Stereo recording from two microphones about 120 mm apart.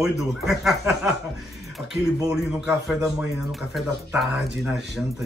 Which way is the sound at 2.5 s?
5° right (ahead or behind).